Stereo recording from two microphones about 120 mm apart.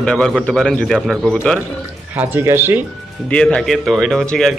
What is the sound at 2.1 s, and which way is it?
Speech, 15° right (ahead or behind).